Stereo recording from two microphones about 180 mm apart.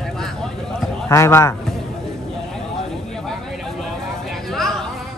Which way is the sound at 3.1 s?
Centre (ahead or behind).